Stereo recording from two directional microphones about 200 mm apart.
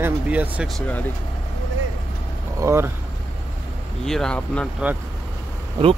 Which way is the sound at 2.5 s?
15° right (ahead or behind).